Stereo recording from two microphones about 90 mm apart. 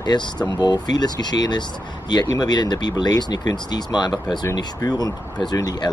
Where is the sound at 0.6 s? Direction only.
55° left (ahead or behind).